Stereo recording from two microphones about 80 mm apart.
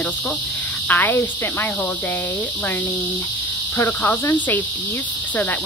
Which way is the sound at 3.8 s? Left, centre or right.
Left.